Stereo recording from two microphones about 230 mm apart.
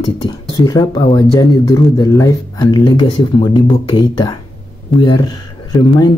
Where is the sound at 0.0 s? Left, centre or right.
Centre.